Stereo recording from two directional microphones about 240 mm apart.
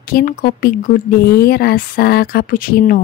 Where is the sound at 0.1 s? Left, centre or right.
Left.